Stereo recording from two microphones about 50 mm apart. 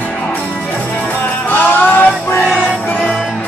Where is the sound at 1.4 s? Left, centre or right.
Left.